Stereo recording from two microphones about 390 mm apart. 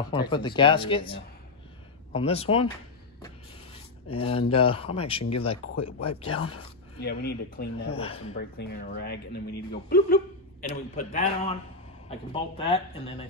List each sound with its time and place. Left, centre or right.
0.1 s speech: centre
4.1 s speech: centre
6.3 s speech: left; by 8.2 s centre
8.3 s a man's voice: left